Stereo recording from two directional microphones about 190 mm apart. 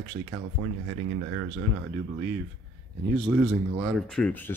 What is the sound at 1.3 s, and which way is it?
Speech, 80° right.